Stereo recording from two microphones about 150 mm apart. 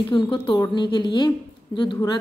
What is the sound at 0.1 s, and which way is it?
A woman's voice, 35° left (ahead or behind).